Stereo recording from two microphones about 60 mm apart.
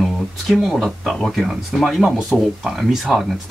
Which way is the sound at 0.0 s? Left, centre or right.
Centre.